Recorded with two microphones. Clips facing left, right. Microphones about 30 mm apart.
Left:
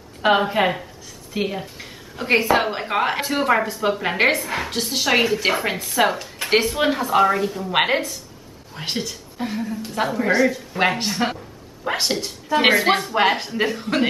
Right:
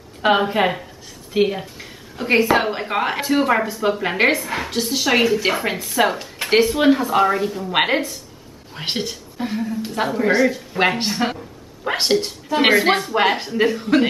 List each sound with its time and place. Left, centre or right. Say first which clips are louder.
0.2 s a woman's voice: right 1 dB; centre
1.8 s a woman's voice: right 2 dB; centre
8.7 s speech: right 2 dB; centre
9.1 s a woman's voice: right 2 dB; centre